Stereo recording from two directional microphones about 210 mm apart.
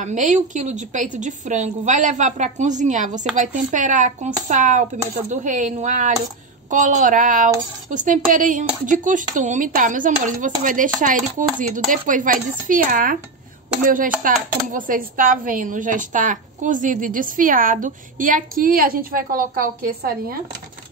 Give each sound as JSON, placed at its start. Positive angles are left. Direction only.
{"t": 0.0, "sound": "speech", "side_deg": -35}